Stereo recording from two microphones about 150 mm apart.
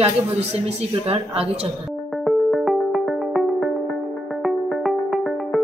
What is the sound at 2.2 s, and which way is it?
Music, centre (ahead or behind).